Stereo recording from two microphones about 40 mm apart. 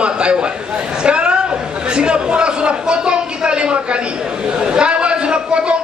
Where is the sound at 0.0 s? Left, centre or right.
Right.